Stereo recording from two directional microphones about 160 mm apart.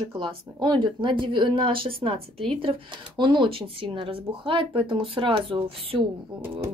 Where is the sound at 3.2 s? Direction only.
30° right (ahead or behind).